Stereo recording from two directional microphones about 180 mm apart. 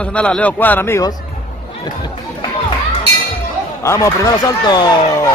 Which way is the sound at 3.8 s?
15° left (ahead or behind).